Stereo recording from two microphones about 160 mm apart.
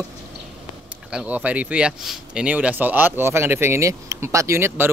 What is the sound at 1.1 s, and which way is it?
Speech, 10° right (ahead or behind).